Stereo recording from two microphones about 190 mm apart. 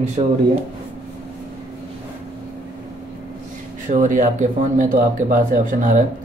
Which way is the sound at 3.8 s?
40° right (ahead or behind).